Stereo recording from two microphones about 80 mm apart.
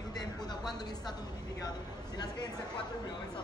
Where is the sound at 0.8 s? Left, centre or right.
Left.